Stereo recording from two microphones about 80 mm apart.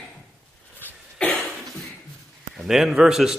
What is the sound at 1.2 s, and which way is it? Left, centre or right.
Cough, centre.